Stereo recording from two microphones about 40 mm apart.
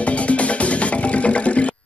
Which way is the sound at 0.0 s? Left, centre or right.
Left.